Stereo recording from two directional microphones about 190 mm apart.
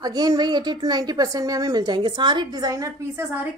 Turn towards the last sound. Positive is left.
turn(degrees=-10)  # may be behind; listen again after turning